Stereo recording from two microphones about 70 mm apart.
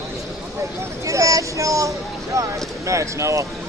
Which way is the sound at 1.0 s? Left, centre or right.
Right.